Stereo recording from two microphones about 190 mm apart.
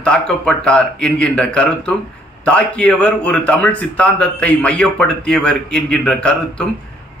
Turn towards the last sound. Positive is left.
turn(degrees=5)  # may be behind; listen again after turning